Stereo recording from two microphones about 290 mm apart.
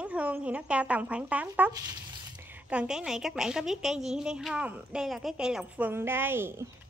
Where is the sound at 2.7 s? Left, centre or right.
Centre.